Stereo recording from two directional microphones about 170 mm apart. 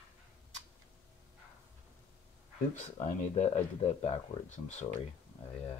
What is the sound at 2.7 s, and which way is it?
Speech, 45° left (ahead or behind).